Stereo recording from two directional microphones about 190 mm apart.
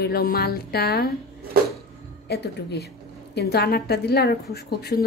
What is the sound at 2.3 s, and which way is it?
A woman's voice, 60° left (ahead or behind).